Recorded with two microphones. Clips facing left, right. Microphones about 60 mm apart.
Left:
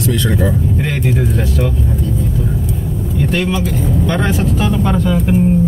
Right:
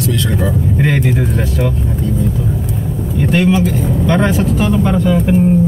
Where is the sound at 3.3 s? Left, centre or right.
Centre.